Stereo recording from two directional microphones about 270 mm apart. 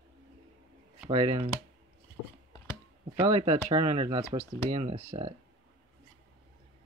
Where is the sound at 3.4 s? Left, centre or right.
Right.